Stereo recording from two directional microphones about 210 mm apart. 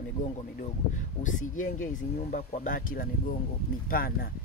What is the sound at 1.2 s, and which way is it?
Speech, 35° left (ahead or behind).